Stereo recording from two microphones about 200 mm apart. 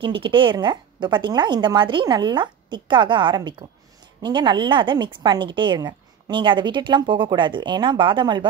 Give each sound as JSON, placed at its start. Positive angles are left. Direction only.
{"t": 0.0, "sound": "a woman's voice", "side_deg": -25}